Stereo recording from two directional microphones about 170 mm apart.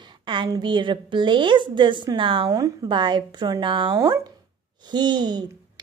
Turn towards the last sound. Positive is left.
turn(degrees=-25)  # may be behind; listen again after turning